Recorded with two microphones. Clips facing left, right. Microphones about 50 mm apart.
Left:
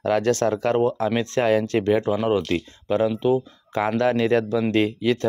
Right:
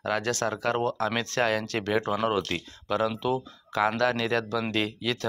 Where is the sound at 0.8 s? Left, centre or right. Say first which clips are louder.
Left 6 dB; left.